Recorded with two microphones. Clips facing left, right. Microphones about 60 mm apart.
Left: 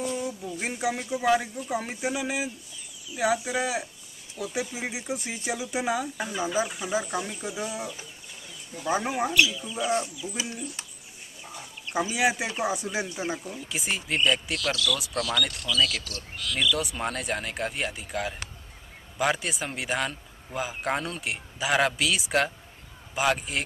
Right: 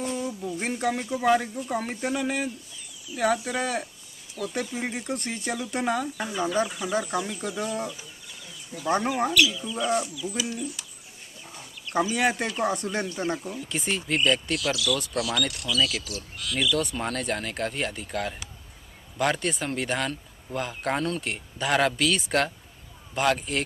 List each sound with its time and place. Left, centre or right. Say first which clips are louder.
0.1 s a sound: right 1 dB; centre
1.2 s speech: right 1 dB; centre
9.9 s speech: right 2 dB; left
11.9 s speech: right 1 dB; centre